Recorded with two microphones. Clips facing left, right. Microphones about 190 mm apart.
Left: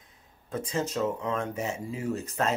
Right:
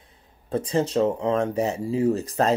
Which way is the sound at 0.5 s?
35° right (ahead or behind).